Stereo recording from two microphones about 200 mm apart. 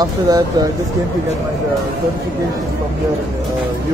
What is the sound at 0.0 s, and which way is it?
Speech, 20° right (ahead or behind).